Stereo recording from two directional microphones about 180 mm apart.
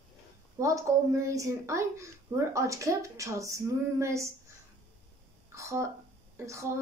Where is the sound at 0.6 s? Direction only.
15° right (ahead or behind).